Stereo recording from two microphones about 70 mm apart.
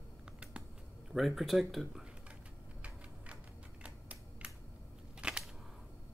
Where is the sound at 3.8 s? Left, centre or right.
Centre.